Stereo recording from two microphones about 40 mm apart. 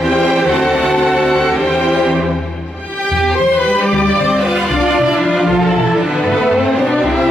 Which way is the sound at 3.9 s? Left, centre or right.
Centre.